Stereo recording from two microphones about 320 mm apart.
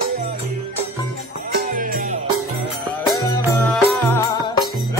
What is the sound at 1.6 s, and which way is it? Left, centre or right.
Music, right.